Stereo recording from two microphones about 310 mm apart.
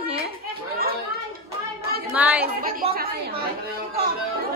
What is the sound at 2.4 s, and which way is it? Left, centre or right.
Speech, right.